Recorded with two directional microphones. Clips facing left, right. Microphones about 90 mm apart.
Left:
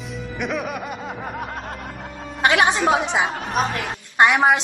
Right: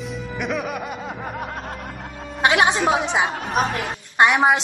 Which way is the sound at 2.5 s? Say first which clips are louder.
Even; 25° right (ahead or behind).